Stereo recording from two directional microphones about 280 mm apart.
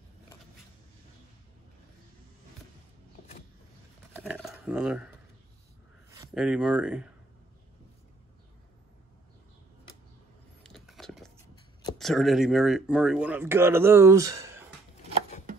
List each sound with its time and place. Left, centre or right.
4.2 s a sound: centre
6.1 s speech: centre
10.6 s vehicle: centre
12.0 s speech: centre